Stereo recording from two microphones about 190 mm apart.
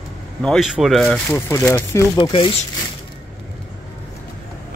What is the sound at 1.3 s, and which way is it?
Speech, 10° left (ahead or behind).